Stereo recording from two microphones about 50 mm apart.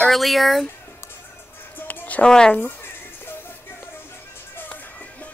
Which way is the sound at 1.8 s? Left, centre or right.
Left.